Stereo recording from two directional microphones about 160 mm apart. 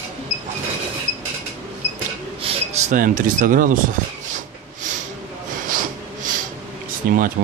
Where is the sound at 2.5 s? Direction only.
35° right (ahead or behind).